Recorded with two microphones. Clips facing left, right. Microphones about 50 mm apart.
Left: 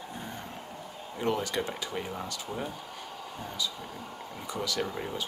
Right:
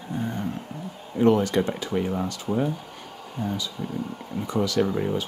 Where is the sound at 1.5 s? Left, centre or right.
Centre.